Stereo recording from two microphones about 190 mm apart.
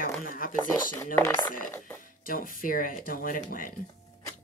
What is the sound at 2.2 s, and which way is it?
Speech, 45° left (ahead or behind).